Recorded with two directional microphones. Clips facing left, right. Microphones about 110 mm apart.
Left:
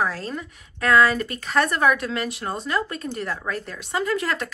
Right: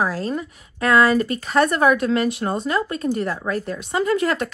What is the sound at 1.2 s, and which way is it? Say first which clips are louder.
A woman's voice: right 4 dB; 40° right (ahead or behind).